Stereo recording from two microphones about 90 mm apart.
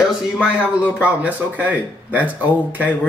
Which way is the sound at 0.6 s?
15° right (ahead or behind).